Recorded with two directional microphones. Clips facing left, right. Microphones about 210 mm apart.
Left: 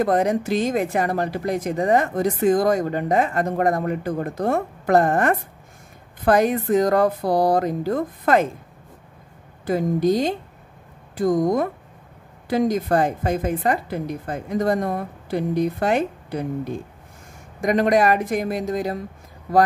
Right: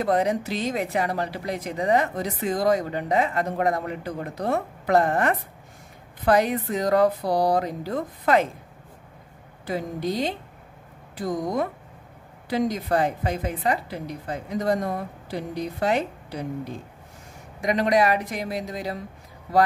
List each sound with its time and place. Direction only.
0.0 s speech: 50° left (ahead or behind)
9.7 s speech: 45° left (ahead or behind)